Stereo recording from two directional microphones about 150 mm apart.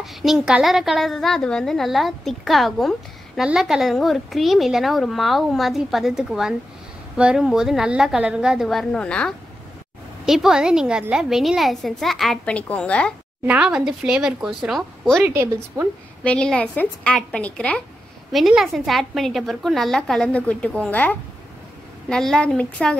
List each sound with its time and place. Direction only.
0.0 s a woman's voice: centre (ahead or behind)
10.2 s a woman's voice: 5° right (ahead or behind)
13.5 s a woman's voice: 5° right (ahead or behind)
15.2 s a woman's voice: 15° right (ahead or behind)
16.3 s a woman's voice: 5° left (ahead or behind)